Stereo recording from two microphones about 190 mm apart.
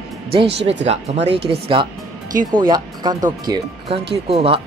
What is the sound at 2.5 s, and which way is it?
Speech, 25° right (ahead or behind).